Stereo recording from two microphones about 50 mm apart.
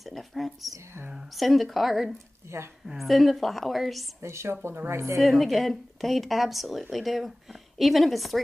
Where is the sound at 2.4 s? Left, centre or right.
Right.